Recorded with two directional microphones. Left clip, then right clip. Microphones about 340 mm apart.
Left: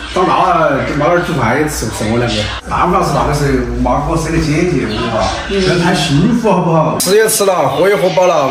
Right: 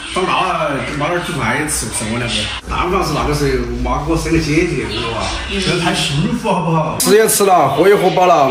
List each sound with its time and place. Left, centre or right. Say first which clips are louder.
7.1 s a man's voice: right 2 dB; centre